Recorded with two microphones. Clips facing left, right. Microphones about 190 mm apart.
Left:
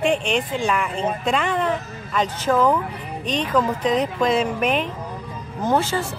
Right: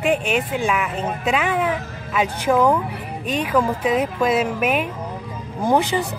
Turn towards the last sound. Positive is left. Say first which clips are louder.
# right 2 dB
turn(degrees=-15)  # may be behind; listen again after turning